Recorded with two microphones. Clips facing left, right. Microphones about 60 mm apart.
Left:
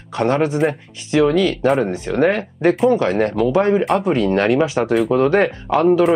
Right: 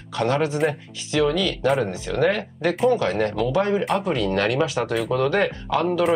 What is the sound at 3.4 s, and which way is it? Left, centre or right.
Speech, centre.